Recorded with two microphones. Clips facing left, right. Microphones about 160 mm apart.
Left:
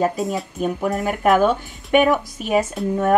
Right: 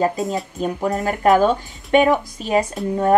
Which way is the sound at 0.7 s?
15° right (ahead or behind).